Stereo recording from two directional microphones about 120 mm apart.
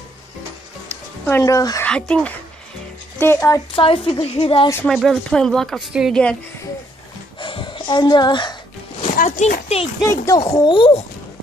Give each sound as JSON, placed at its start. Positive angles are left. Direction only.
{"t": 0.8, "sound": "music", "side_deg": 15}
{"t": 1.4, "sound": "speech", "side_deg": 30}
{"t": 1.9, "sound": "speech", "side_deg": 5}
{"t": 3.2, "sound": "speech", "side_deg": 20}
{"t": 3.7, "sound": "a woman's voice", "side_deg": 50}
{"t": 4.9, "sound": "speech", "side_deg": 0}
{"t": 7.3, "sound": "a sound", "side_deg": 45}
{"t": 9.0, "sound": "a child's voice", "side_deg": 80}
{"t": 10.0, "sound": "speech", "side_deg": 25}